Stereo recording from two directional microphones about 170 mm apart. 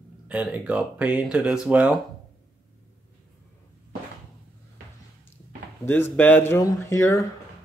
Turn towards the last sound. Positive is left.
turn(degrees=15)  # may be behind; listen again after turning